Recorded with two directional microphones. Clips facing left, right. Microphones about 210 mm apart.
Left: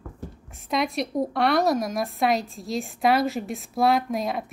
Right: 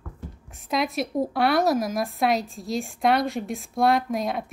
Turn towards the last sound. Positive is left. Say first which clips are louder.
# even
turn(degrees=0)  # may be behind; listen again after turning